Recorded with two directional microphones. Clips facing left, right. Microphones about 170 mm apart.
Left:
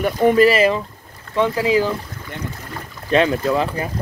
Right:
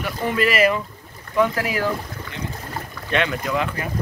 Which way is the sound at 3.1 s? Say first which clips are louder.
Left 6 dB; 30° left (ahead or behind).